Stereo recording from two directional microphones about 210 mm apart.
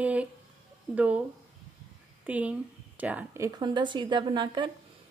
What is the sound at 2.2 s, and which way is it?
A woman's voice, 5° right (ahead or behind).